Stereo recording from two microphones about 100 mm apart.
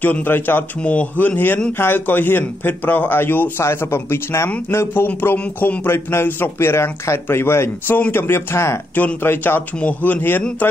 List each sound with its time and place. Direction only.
0.0 s a man's voice: 20° left (ahead or behind)